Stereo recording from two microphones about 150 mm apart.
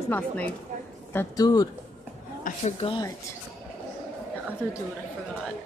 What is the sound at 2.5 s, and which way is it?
Speech, 70° left (ahead or behind).